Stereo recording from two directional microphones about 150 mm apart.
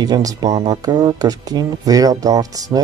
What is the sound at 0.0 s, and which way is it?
Speech, 25° right (ahead or behind).